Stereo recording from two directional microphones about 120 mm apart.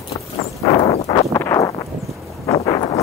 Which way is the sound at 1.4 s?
25° left (ahead or behind).